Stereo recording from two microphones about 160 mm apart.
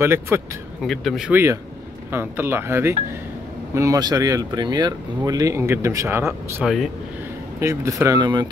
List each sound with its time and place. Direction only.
0.0 s speech: 15° right (ahead or behind)
0.8 s speech: centre (ahead or behind)
1.3 s speech: 15° right (ahead or behind)
6.6 s speech: centre (ahead or behind)
7.6 s speech: 20° right (ahead or behind)